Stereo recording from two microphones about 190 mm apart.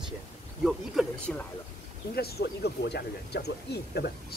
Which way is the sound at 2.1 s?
60° left (ahead or behind).